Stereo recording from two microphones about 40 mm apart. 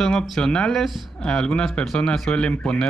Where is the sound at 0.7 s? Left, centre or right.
Centre.